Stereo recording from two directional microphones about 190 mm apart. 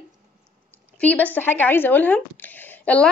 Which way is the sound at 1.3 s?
10° left (ahead or behind).